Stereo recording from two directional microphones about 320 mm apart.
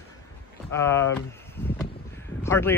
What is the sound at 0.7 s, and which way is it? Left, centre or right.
Speech, centre.